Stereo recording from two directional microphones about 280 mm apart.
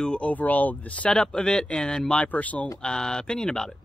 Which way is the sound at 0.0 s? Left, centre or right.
Centre.